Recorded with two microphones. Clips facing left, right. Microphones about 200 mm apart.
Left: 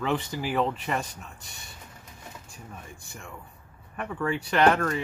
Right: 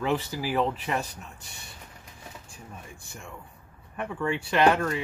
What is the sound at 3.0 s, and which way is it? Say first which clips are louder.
Speech: even; centre (ahead or behind).